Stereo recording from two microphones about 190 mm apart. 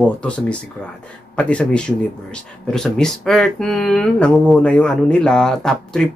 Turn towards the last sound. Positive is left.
turn(degrees=5)  # may be behind; listen again after turning